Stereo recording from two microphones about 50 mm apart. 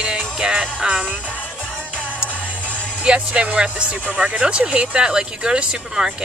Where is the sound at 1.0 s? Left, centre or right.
Right.